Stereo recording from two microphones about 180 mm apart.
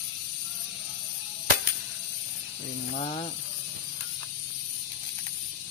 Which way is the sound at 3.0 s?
35° left (ahead or behind).